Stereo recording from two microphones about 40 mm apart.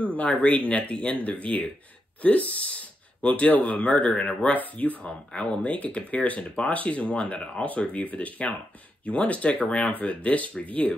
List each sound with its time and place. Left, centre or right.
0.2 s speech: left
4.0 s speech: left
5.0 s speech: left